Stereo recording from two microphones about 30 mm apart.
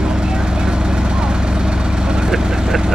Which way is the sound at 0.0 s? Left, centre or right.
Right.